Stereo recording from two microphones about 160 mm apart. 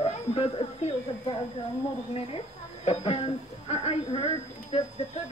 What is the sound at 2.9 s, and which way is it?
A woman's voice, 40° left (ahead or behind).